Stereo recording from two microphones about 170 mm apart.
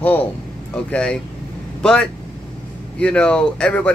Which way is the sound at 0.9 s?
5° left (ahead or behind).